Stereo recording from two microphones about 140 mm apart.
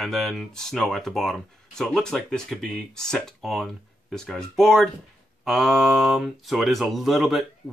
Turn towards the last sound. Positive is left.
turn(degrees=0)  # may be behind; listen again after turning